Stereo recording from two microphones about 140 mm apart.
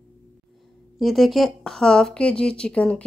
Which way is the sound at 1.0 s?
Centre (ahead or behind).